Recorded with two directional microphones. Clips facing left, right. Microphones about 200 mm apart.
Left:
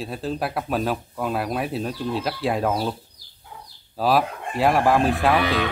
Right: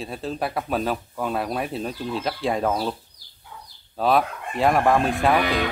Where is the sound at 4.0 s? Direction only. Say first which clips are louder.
Even; centre (ahead or behind).